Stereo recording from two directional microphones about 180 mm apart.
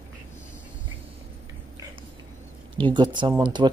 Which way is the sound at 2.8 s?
25° right (ahead or behind).